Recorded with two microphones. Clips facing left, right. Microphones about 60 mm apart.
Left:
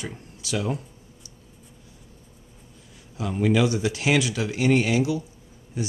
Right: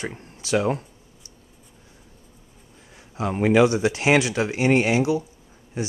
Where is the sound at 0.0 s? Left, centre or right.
Right.